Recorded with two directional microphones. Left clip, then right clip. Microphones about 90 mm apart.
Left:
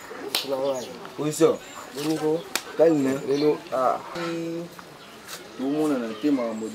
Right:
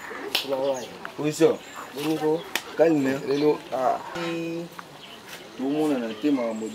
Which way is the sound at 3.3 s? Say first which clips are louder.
Even; 15° right (ahead or behind).